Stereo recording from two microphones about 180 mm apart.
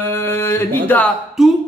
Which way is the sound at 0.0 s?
15° left (ahead or behind).